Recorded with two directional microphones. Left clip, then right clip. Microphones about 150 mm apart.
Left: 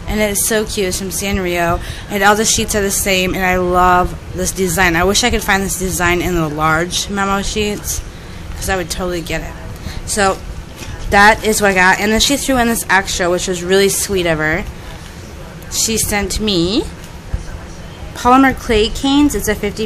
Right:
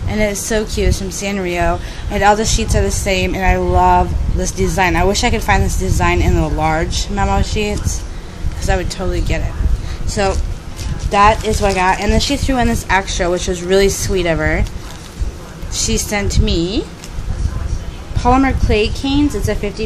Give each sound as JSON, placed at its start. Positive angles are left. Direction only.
{"t": 0.1, "sound": "a woman's voice", "side_deg": 5}
{"t": 11.1, "sound": "speech", "side_deg": 25}
{"t": 15.7, "sound": "a woman's voice", "side_deg": 5}
{"t": 18.1, "sound": "speech", "side_deg": 15}